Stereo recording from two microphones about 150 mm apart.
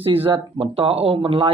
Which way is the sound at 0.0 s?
35° right (ahead or behind).